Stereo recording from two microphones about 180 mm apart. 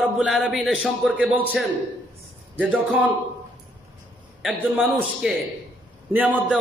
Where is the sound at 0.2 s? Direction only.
Centre (ahead or behind).